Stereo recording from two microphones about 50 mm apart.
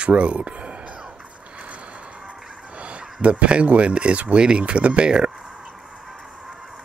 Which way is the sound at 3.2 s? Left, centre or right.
Right.